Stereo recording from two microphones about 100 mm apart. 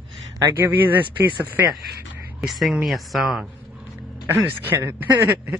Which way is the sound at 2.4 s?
Centre (ahead or behind).